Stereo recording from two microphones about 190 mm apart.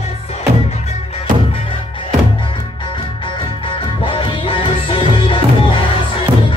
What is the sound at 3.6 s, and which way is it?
Music, 25° left (ahead or behind).